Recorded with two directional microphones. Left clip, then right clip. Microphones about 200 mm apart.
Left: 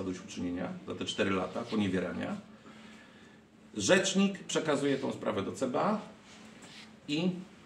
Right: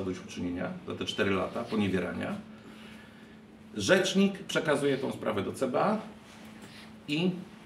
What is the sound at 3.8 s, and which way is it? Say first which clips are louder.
Speech: right 2 dB; 5° right (ahead or behind).